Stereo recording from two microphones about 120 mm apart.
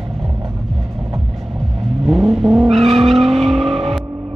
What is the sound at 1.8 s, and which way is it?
Vehicle, 50° right (ahead or behind).